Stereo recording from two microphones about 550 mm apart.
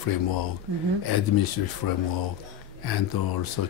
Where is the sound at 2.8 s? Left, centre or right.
Left.